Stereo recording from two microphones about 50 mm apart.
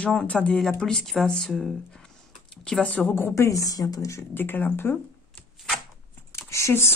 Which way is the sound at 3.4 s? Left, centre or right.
Left.